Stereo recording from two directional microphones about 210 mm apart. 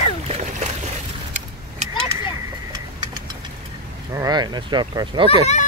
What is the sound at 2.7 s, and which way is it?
Vehicle, 20° right (ahead or behind).